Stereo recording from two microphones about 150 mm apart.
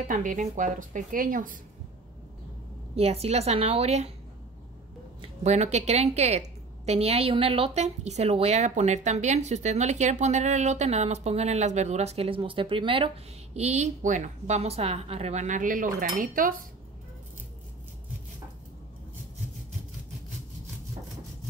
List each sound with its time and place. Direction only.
0.1 s a woman's voice: 60° right (ahead or behind)
3.0 s a woman's voice: 45° right (ahead or behind)
5.2 s a woman's voice: 50° right (ahead or behind)
13.6 s a woman's voice: 45° right (ahead or behind); by 16.6 s 65° right (ahead or behind)